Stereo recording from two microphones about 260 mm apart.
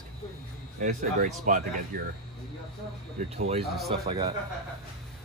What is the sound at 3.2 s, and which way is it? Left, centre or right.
Speech, right.